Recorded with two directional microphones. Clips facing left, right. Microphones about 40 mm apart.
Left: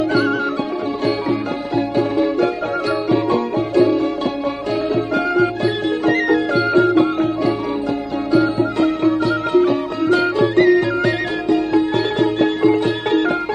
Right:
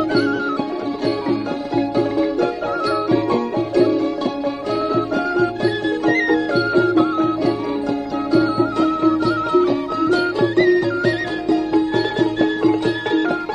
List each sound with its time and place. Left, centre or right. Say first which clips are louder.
8.7 s music: even; left